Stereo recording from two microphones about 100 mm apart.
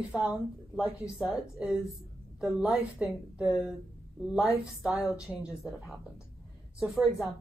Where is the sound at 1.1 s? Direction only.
Centre (ahead or behind).